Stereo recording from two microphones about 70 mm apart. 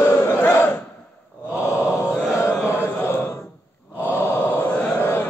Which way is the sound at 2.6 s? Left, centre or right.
Left.